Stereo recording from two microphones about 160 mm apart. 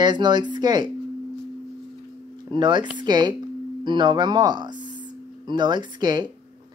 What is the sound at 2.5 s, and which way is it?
Speech, 30° right (ahead or behind).